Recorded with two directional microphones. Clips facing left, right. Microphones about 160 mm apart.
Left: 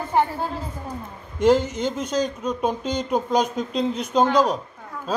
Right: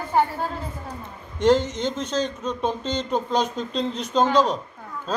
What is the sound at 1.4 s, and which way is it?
Speech, 10° left (ahead or behind).